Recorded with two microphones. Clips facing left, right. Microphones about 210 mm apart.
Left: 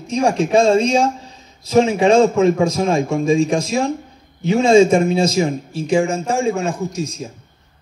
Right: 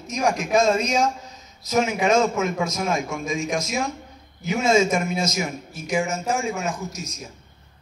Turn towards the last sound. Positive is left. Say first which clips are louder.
# left 9 dB
turn(degrees=30)  # may be behind; listen again after turning